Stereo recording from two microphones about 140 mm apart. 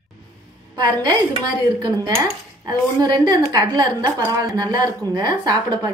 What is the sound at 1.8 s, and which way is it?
A woman's voice, 30° right (ahead or behind).